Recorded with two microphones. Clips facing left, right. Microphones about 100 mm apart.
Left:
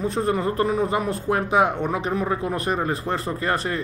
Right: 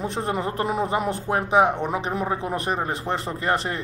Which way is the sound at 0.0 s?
20° right (ahead or behind).